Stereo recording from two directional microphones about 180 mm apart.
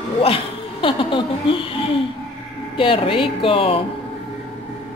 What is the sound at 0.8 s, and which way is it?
A woman's voice, 30° left (ahead or behind).